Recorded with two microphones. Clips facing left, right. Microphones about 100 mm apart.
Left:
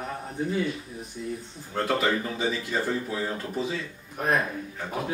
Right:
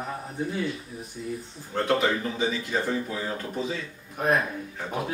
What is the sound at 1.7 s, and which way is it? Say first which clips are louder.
Speech: right 2 dB; 5° left (ahead or behind).